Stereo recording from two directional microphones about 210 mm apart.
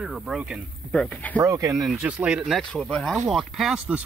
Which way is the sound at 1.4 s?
15° right (ahead or behind).